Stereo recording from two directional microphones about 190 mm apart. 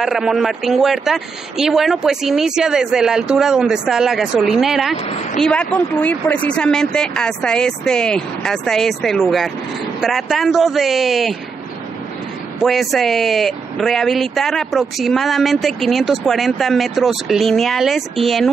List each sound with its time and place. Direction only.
0.0 s speech: centre (ahead or behind)
12.6 s speech: centre (ahead or behind)